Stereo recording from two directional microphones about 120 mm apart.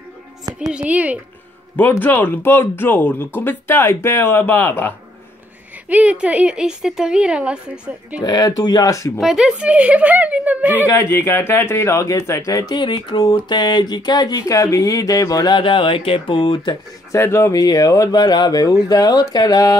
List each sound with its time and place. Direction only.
0.6 s a woman's voice: 10° right (ahead or behind)
1.8 s speech: 15° left (ahead or behind)
5.9 s a woman's voice: 10° right (ahead or behind)
8.2 s speech: 30° left (ahead or behind)
9.2 s a woman's voice: 5° right (ahead or behind)
10.9 s speech: 25° left (ahead or behind)
13.5 s a sound: 35° left (ahead or behind)
17.1 s a sound: 25° left (ahead or behind)